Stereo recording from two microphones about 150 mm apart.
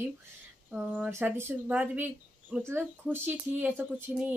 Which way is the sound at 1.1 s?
15° right (ahead or behind).